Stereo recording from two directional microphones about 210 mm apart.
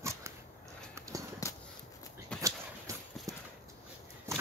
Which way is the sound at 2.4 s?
15° right (ahead or behind).